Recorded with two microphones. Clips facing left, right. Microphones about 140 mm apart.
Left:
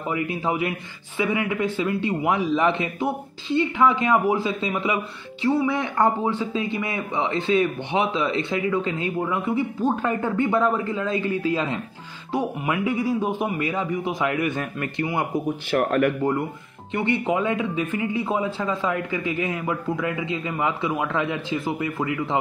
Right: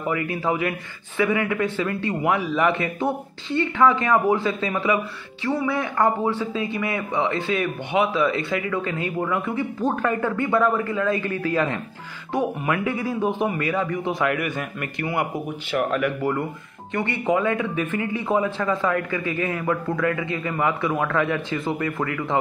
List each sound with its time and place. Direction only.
0.0 s a man's voice: 20° left (ahead or behind)
15.7 s speech: 50° left (ahead or behind)
16.9 s speech: 15° left (ahead or behind)